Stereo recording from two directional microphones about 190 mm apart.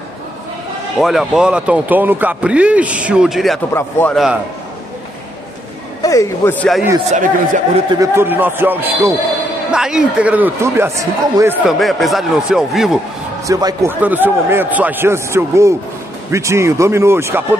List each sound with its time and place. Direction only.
1.0 s speech: centre (ahead or behind)
3.7 s speech: 10° left (ahead or behind)
6.0 s speech: 15° left (ahead or behind)
7.1 s speech: 40° right (ahead or behind)
7.9 s speech: 15° right (ahead or behind)
11.6 s speech: centre (ahead or behind)
13.5 s a man's voice: 20° right (ahead or behind)